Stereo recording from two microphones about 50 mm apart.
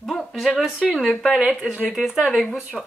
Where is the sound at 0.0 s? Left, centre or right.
Centre.